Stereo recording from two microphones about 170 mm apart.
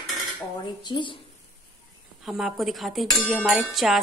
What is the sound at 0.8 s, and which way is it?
Speech, 25° left (ahead or behind).